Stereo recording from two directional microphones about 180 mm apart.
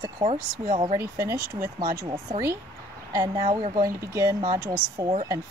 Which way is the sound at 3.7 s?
20° right (ahead or behind).